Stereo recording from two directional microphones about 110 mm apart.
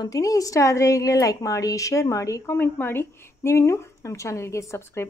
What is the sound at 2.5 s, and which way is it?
A woman's voice, 20° left (ahead or behind).